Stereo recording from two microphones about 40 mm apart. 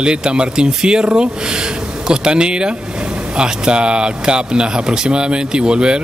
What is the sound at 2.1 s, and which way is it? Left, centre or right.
Speech, right.